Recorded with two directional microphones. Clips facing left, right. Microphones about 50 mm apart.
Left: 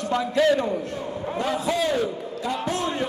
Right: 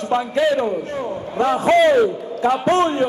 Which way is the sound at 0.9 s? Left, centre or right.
Right.